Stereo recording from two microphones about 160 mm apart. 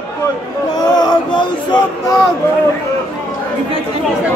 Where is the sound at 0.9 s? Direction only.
25° left (ahead or behind).